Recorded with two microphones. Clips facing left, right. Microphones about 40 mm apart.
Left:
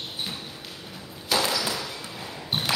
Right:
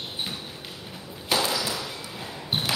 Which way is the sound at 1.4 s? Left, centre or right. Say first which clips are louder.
Left 2 dB; centre.